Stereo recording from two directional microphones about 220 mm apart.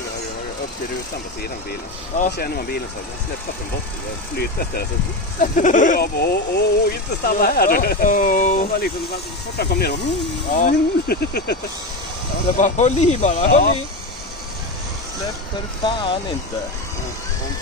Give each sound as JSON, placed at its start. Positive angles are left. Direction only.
{"t": 2.3, "sound": "speech", "side_deg": 45}
{"t": 4.4, "sound": "speech", "side_deg": 45}
{"t": 9.6, "sound": "speech", "side_deg": 45}
{"t": 10.5, "sound": "speech", "side_deg": 35}
{"t": 12.5, "sound": "speech", "side_deg": 30}
{"t": 15.8, "sound": "speech", "side_deg": 20}